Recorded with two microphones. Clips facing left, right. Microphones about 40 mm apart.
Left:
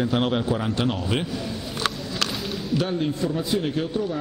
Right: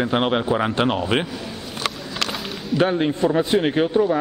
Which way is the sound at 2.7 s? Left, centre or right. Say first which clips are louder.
Right 6 dB; right.